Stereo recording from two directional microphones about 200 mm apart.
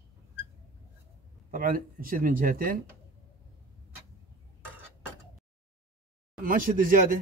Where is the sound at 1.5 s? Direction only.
45° right (ahead or behind).